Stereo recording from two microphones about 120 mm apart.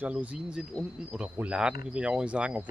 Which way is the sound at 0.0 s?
10° right (ahead or behind).